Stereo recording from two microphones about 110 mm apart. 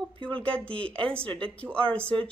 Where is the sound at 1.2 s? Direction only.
50° right (ahead or behind).